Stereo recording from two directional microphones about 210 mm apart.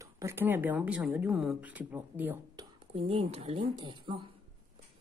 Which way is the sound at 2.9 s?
30° right (ahead or behind).